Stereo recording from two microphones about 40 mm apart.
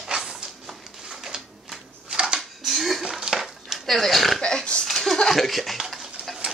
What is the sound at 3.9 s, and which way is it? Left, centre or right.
Speech, centre.